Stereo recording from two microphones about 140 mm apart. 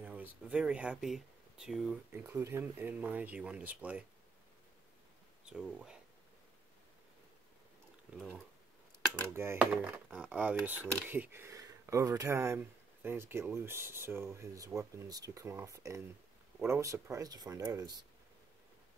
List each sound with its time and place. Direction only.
0.0 s speech: 10° right (ahead or behind)
2.2 s speech: 15° right (ahead or behind)
5.4 s a sound: 5° right (ahead or behind)
9.3 s speech: 15° right (ahead or behind)